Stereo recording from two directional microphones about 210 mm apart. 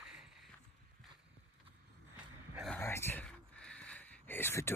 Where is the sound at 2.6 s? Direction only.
10° left (ahead or behind).